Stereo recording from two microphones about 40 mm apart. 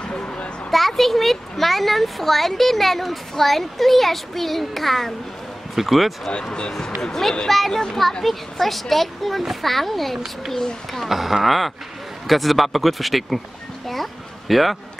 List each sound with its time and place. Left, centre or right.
0.1 s a sound: left
0.7 s a child's voice: centre
6.8 s a child's voice: centre
11.1 s a child's voice: centre
14.5 s a child's voice: centre